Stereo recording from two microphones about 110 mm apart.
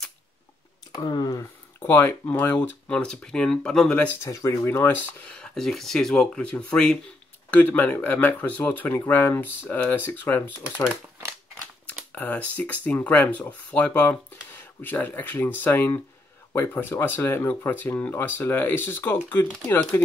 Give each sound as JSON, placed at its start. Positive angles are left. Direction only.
{"t": 0.9, "sound": "speech", "side_deg": 40}
{"t": 1.8, "sound": "speech", "side_deg": 20}
{"t": 4.2, "sound": "speech", "side_deg": 25}
{"t": 11.8, "sound": "speech", "side_deg": 15}